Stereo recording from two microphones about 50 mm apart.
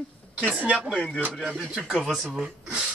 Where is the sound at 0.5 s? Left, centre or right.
Right.